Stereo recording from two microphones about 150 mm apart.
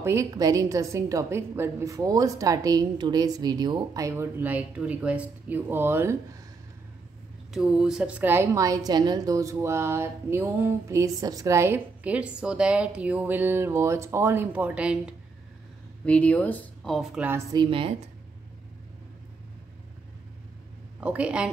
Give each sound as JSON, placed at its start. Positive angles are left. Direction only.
{"t": 0.0, "sound": "a woman's voice", "side_deg": -20}
{"t": 7.5, "sound": "a woman's voice", "side_deg": -5}
{"t": 16.1, "sound": "speech", "side_deg": 10}
{"t": 17.3, "sound": "a woman's voice", "side_deg": -20}
{"t": 17.6, "sound": "speech", "side_deg": -35}
{"t": 21.0, "sound": "a woman's voice", "side_deg": -10}